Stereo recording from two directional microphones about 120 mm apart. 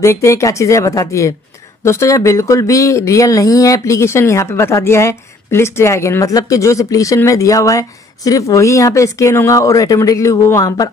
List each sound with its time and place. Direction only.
0.0 s speech: 25° left (ahead or behind)